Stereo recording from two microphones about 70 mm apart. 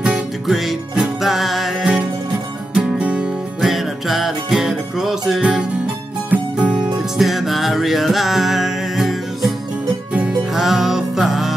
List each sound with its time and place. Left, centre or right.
0.5 s music: centre
2.7 s music: centre
3.6 s music: centre
7.2 s music: centre
10.5 s music: centre